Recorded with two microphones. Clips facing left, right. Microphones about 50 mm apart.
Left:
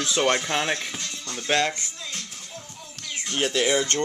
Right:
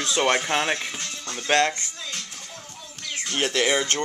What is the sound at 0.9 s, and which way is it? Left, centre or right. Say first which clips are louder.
Music: right 1 dB; right.